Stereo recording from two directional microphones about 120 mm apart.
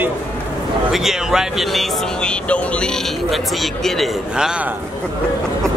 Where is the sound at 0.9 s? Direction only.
5° right (ahead or behind).